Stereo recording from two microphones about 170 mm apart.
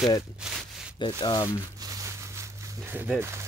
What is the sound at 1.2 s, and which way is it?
Speech, 25° left (ahead or behind).